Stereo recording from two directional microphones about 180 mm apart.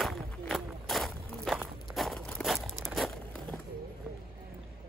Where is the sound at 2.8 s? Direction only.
Centre (ahead or behind).